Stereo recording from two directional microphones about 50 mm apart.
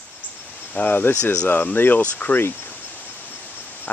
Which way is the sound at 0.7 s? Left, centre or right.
Left.